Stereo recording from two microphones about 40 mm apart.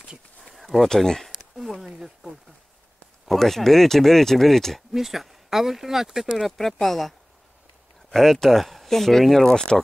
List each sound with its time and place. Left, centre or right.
0.4 s a sound: centre
0.8 s speech: centre
1.6 s a sound: centre
3.3 s speech: centre
4.9 s speech: centre
6.3 s speech: centre
9.4 s speech: centre